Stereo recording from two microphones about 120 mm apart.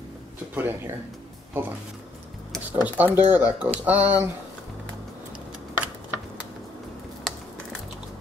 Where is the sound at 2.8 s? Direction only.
15° right (ahead or behind).